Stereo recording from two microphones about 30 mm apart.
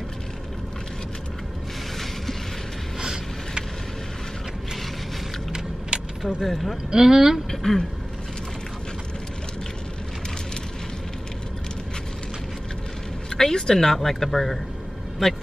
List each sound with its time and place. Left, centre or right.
3.0 s vehicle: centre
5.9 s vehicle: right
6.2 s speech: centre
6.9 s speech: centre
7.5 s speech: centre
13.3 s speech: centre
13.9 s speech: centre